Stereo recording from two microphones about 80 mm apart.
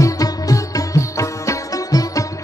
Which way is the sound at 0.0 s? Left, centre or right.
Left.